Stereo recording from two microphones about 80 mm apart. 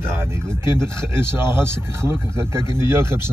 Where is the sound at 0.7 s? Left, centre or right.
Right.